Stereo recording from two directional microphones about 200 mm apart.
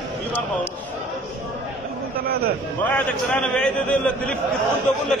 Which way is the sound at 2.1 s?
50° right (ahead or behind).